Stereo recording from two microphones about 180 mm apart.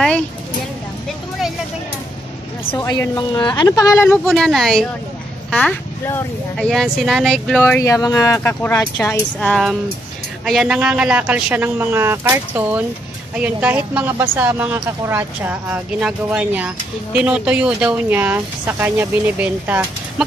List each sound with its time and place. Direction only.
2.7 s speech: 15° left (ahead or behind)
4.3 s a woman's voice: centre (ahead or behind)